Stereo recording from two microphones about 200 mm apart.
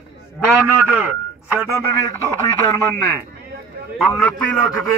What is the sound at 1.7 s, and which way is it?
Speech, 15° left (ahead or behind).